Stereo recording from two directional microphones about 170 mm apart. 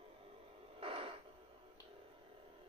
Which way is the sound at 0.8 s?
30° right (ahead or behind).